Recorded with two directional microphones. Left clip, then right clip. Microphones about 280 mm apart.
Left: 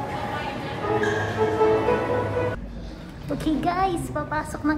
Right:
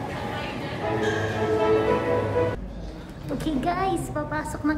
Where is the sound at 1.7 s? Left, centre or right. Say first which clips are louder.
Even; centre.